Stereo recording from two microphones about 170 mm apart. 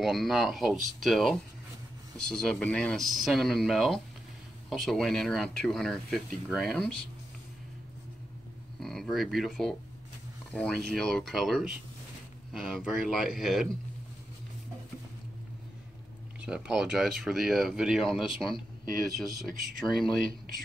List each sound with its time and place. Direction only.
0.0 s speech: centre (ahead or behind)
8.7 s speech: centre (ahead or behind)
16.3 s speech: 5° right (ahead or behind)